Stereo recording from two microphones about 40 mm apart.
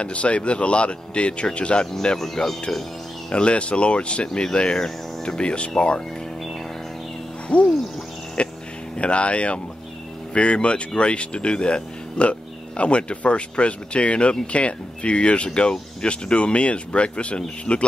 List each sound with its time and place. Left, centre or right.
0.0 s speech: left
2.4 s speech: centre
7.4 s a sound: left
8.4 s speech: left